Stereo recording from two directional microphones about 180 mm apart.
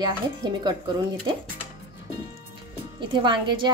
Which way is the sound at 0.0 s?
25° right (ahead or behind).